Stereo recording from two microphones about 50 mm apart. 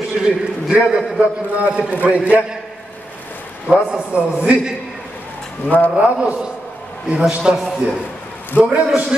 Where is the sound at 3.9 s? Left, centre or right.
Right.